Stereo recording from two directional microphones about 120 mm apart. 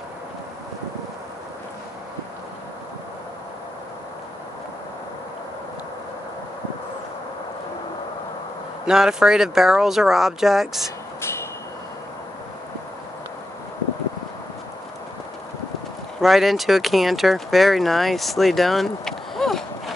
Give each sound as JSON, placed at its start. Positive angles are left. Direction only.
{"t": 8.8, "sound": "speech", "side_deg": -5}
{"t": 11.1, "sound": "vehicle", "side_deg": 20}
{"t": 16.2, "sound": "speech", "side_deg": 0}